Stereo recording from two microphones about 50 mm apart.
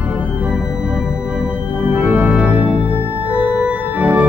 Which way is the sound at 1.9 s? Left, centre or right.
Right.